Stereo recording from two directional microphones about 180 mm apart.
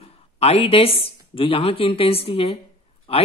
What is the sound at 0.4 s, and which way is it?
Speech, 35° left (ahead or behind).